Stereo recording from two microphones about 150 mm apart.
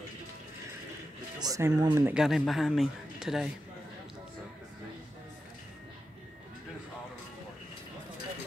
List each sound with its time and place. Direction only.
1.4 s speech: 25° right (ahead or behind)
2.1 s speech: centre (ahead or behind)